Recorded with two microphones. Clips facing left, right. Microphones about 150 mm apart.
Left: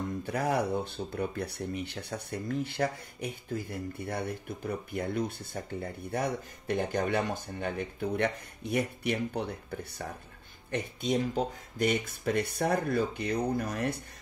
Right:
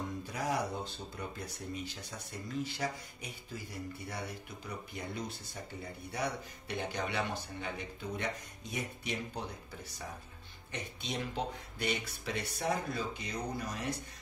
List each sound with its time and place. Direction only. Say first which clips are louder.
0.3 s speech: left 7 dB; 60° left (ahead or behind)